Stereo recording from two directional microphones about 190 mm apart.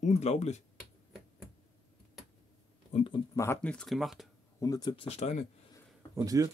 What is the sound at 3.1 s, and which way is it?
Speech, 15° left (ahead or behind).